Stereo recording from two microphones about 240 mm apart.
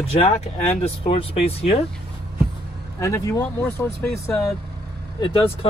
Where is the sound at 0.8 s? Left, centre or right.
Left.